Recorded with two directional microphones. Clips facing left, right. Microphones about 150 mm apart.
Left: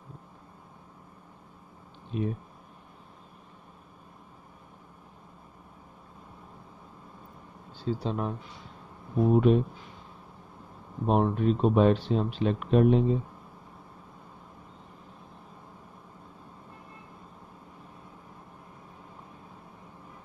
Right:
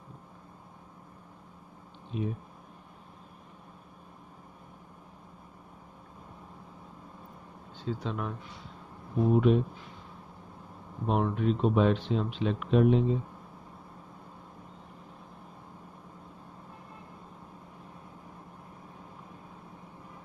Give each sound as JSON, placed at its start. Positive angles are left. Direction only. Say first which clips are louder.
{"t": 2.1, "sound": "speech", "louder": "left 3 dB", "side_deg": 55}
{"t": 7.8, "sound": "speech", "louder": "left 4 dB", "side_deg": 35}
{"t": 11.1, "sound": "speech", "louder": "left 3 dB", "side_deg": 40}